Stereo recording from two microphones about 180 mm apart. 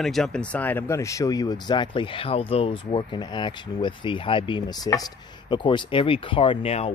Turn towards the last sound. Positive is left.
turn(degrees=35)  # may be behind; listen again after turning